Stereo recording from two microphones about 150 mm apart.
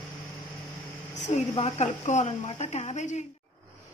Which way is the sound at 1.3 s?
45° left (ahead or behind).